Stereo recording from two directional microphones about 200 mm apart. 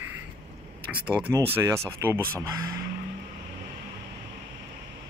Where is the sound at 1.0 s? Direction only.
5° right (ahead or behind).